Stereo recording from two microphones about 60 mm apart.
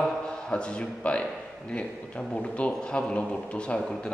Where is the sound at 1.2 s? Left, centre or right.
Centre.